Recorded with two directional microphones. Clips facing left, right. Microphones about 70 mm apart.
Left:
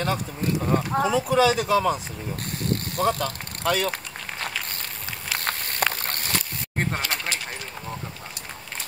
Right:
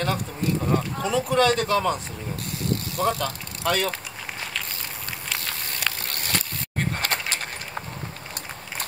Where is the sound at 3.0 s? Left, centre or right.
Centre.